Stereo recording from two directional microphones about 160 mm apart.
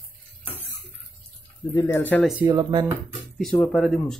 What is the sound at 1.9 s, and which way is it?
Speech, 10° left (ahead or behind).